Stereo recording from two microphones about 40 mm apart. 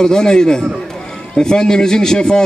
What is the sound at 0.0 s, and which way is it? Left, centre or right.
A man's voice, centre.